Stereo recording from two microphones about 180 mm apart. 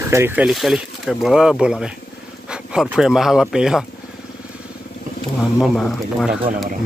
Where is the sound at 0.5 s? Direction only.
Centre (ahead or behind).